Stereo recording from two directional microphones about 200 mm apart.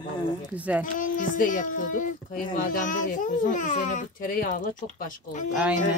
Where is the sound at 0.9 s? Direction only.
40° left (ahead or behind).